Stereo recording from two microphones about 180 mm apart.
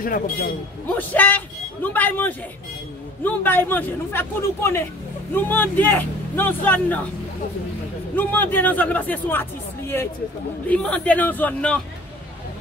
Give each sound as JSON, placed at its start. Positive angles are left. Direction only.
{"t": 0.0, "sound": "a man's voice", "side_deg": 50}
{"t": 0.8, "sound": "speech", "side_deg": 10}
{"t": 8.2, "sound": "speech", "side_deg": 10}